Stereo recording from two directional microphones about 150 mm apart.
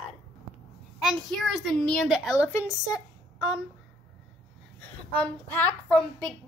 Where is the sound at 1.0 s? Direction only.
Centre (ahead or behind).